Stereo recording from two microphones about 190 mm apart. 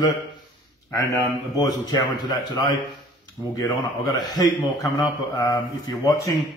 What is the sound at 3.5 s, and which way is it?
A man's voice, 20° left (ahead or behind).